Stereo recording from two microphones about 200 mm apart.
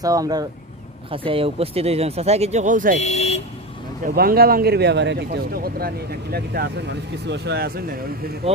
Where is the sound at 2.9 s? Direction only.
35° left (ahead or behind).